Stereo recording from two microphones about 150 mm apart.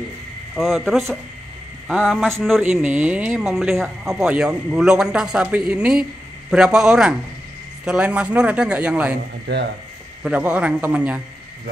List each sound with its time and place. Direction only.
0.6 s speech: centre (ahead or behind)
10.2 s speech: 10° right (ahead or behind)